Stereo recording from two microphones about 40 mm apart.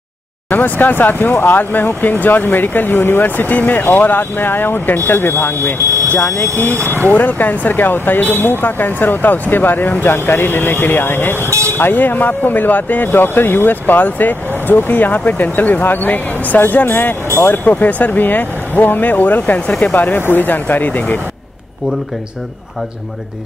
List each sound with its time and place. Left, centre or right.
0.5 s speech: left
6.1 s speech: left
7.0 s speech: left
11.9 s speech: left
17.5 s speech: left